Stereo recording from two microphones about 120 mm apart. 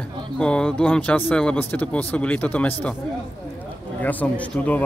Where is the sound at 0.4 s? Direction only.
5° left (ahead or behind).